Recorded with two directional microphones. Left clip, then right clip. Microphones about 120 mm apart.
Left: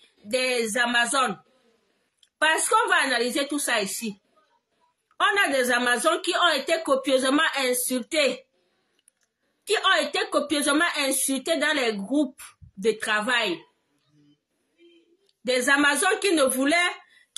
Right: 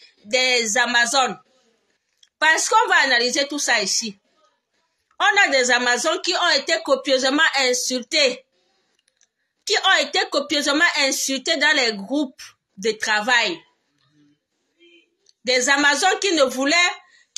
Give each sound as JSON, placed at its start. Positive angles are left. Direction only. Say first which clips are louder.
{"t": 0.3, "sound": "speech", "louder": "right 6 dB", "side_deg": 15}
{"t": 2.4, "sound": "speech", "louder": "right 5 dB", "side_deg": 15}
{"t": 5.2, "sound": "speech", "louder": "right 5 dB", "side_deg": 15}
{"t": 9.7, "sound": "speech", "louder": "right 4 dB", "side_deg": 15}
{"t": 15.4, "sound": "speech", "louder": "right 4 dB", "side_deg": 10}